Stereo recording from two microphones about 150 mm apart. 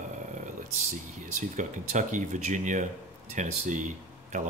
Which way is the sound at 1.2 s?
55° right (ahead or behind).